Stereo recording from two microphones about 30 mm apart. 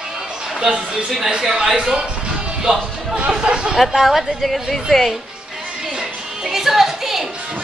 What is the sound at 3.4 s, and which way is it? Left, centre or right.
Speech, right.